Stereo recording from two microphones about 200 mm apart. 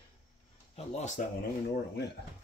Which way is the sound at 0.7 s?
35° left (ahead or behind).